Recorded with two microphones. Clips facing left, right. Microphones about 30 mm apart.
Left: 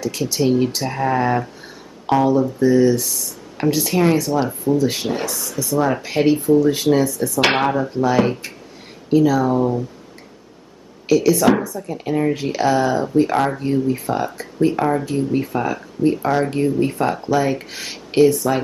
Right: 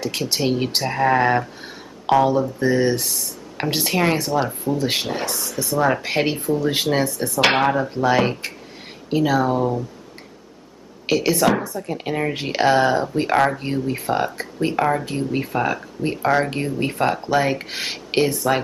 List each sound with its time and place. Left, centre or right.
0.3 s speech: right
2.6 s speech: right
3.9 s speech: right
4.4 s speech: centre
4.7 s speech: right
6.6 s speech: right
7.3 s speech: centre
8.2 s speech: right
11.1 s speech: right